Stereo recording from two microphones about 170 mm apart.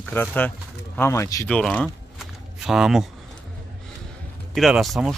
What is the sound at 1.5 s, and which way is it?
Speech, 5° left (ahead or behind).